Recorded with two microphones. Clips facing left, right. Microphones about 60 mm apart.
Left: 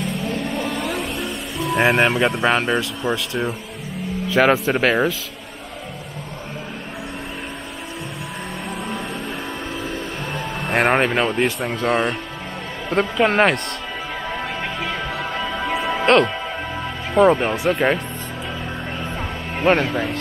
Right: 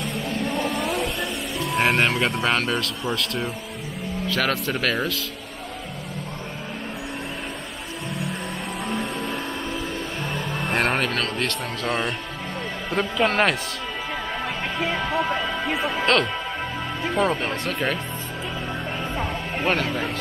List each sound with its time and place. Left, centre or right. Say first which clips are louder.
0.2 s music: left 2 dB; centre
0.7 s vehicle: even; centre
1.8 s speech: left 4 dB; centre
4.3 s speech: left 8 dB; centre
8.8 s music: even; centre
10.7 s speech: left 6 dB; centre
15.6 s music: left 7 dB; centre
17.1 s speech: left 9 dB; centre
19.6 s speech: left 6 dB; centre